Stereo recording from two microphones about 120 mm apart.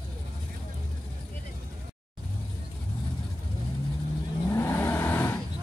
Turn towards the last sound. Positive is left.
turn(degrees=20)  # may be behind; listen again after turning